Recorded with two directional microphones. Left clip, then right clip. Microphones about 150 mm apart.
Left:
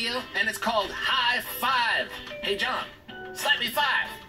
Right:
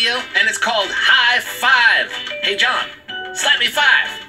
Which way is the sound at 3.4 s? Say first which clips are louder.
Right 10 dB; 30° right (ahead or behind).